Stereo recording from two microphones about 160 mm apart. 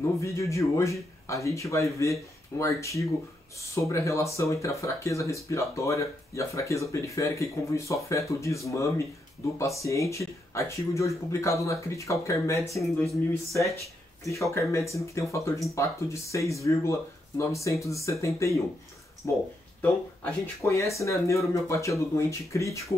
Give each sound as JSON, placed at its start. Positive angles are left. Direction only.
{"t": 0.2, "sound": "speech", "side_deg": 20}
{"t": 12.6, "sound": "speech", "side_deg": 0}
{"t": 13.3, "sound": "speech", "side_deg": 20}